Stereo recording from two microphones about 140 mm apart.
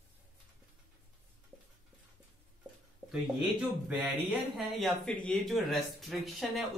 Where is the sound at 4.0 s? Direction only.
5° right (ahead or behind).